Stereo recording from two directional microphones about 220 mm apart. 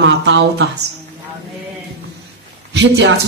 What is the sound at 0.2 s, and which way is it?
Speech, 50° right (ahead or behind).